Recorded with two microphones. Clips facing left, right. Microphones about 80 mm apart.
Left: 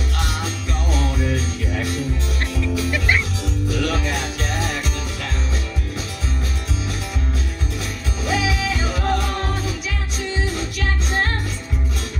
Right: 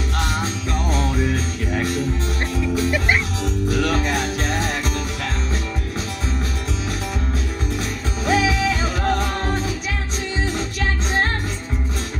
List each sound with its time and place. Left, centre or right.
0.2 s music: right
3.6 s music: right
8.3 s music: right